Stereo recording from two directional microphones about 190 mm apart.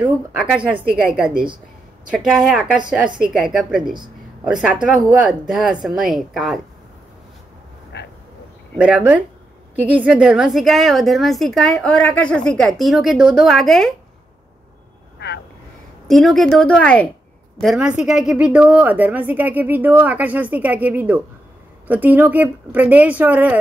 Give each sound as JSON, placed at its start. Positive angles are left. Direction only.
{"t": 0.7, "sound": "a woman's voice", "side_deg": -5}
{"t": 7.9, "sound": "a sound", "side_deg": 65}
{"t": 8.7, "sound": "a woman's voice", "side_deg": -5}
{"t": 15.1, "sound": "vehicle", "side_deg": 65}
{"t": 16.1, "sound": "a woman's voice", "side_deg": 0}